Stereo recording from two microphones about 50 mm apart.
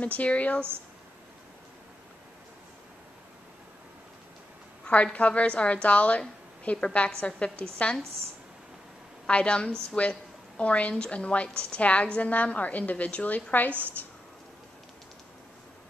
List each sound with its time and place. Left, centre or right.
0.0 s a woman's voice: left
4.8 s a woman's voice: left
9.3 s a woman's voice: left